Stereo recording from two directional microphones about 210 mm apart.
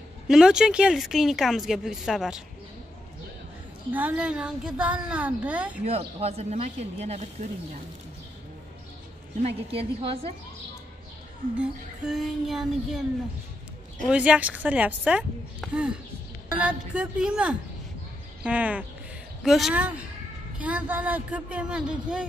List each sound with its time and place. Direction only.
0.3 s speech: 5° right (ahead or behind)
3.9 s speech: 5° right (ahead or behind)
5.9 s speech: 30° right (ahead or behind)
9.4 s a woman's voice: 30° right (ahead or behind)
11.6 s speech: centre (ahead or behind)
14.0 s speech: 5° right (ahead or behind)